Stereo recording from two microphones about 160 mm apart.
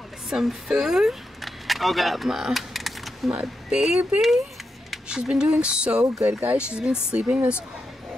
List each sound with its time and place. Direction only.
0.3 s speech: centre (ahead or behind)